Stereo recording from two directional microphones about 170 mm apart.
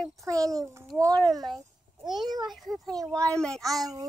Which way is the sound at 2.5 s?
Centre (ahead or behind).